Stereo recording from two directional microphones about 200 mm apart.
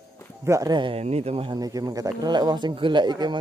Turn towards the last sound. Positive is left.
turn(degrees=-20)  # may be behind; listen again after turning